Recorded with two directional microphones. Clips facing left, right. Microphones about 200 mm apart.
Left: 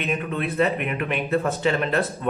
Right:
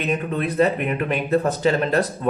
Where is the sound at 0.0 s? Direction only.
40° right (ahead or behind).